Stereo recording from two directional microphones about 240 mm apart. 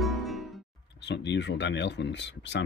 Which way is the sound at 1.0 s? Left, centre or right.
Left.